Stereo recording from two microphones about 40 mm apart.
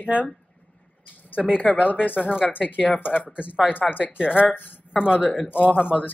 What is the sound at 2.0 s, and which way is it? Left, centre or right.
Speech, left.